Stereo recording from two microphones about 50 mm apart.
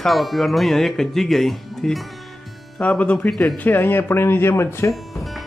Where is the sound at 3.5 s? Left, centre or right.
Left.